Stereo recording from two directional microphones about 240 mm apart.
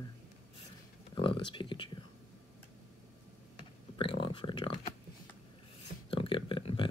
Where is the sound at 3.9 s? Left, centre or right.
Left.